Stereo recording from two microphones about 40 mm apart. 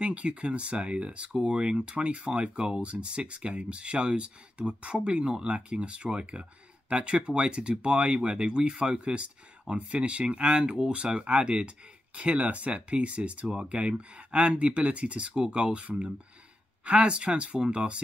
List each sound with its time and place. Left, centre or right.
0.0 s speech: right